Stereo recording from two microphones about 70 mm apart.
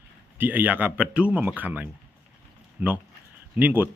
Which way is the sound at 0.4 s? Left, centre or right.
Right.